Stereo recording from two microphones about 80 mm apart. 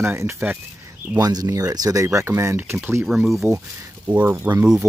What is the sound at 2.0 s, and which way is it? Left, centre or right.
Speech, right.